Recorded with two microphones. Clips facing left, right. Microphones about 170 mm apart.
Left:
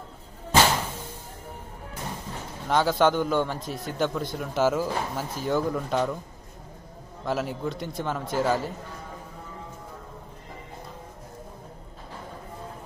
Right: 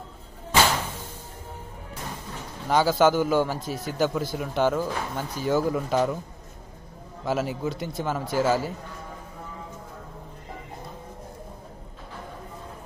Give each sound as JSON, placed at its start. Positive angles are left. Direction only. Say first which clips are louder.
{"t": 2.7, "sound": "a man's voice", "louder": "right 2 dB", "side_deg": 0}
{"t": 7.2, "sound": "a man's voice", "louder": "right 2 dB", "side_deg": 0}